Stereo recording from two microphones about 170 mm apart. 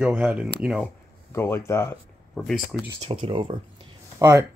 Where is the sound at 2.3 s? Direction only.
Centre (ahead or behind).